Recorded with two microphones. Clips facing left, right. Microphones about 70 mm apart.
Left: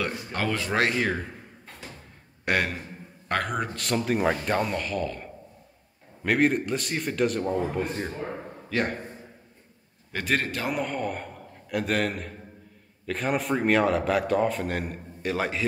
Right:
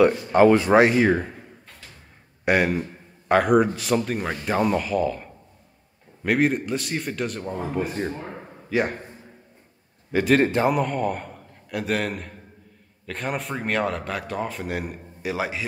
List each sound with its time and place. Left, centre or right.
0.0 s speech: right
2.4 s a man's voice: centre
10.1 s a man's voice: centre
10.4 s speech: right
10.7 s a man's voice: centre